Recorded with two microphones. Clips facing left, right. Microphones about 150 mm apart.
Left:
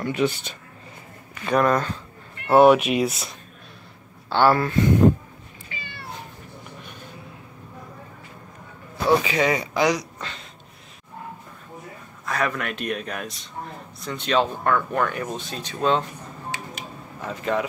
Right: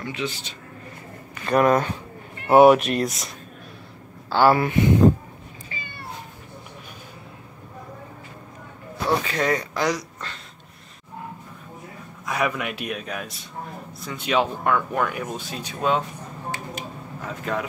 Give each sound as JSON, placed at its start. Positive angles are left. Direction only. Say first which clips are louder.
{"t": 0.0, "sound": "speech", "louder": "left 6 dB", "side_deg": 50}
{"t": 1.4, "sound": "speech", "louder": "right 2 dB", "side_deg": -5}
{"t": 4.3, "sound": "speech", "louder": "right 1 dB", "side_deg": -10}
{"t": 9.2, "sound": "speech", "louder": "left 2 dB", "side_deg": 5}
{"t": 12.3, "sound": "speech", "louder": "right 1 dB", "side_deg": -15}
{"t": 17.2, "sound": "speech", "louder": "left 3 dB", "side_deg": 0}